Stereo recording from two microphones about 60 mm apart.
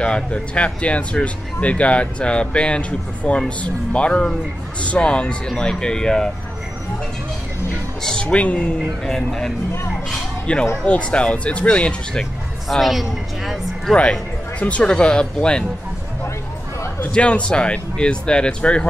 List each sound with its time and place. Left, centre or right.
0.0 s speech: centre
8.0 s speech: centre
9.0 s speech: centre
12.6 s a woman's voice: centre
14.6 s speech: left
17.1 s speech: centre